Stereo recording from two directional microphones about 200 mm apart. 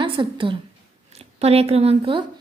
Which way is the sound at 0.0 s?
25° right (ahead or behind).